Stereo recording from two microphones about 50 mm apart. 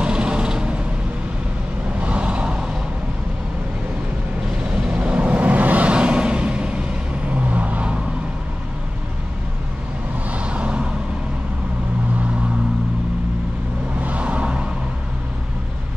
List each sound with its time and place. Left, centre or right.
0.0 s vehicle: right
2.0 s vehicle: right
4.7 s a sound: right
7.4 s vehicle: right
10.3 s vehicle: right
14.0 s vehicle: right